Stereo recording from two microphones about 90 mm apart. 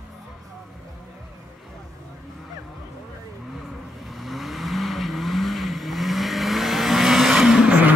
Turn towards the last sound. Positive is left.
turn(degrees=-5)  # may be behind; listen again after turning